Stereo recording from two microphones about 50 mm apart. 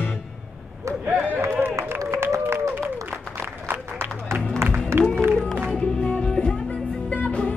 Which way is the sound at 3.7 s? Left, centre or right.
Right.